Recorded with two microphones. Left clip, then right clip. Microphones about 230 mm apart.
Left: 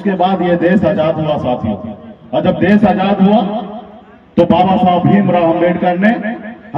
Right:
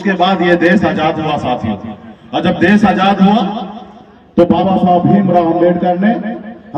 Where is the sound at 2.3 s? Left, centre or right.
Centre.